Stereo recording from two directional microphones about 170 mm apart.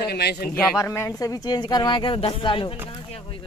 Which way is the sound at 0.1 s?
70° left (ahead or behind).